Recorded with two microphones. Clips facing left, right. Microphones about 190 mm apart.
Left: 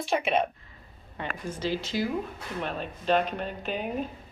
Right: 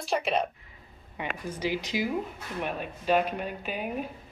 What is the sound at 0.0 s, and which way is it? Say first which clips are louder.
Speech: left 2 dB; centre (ahead or behind).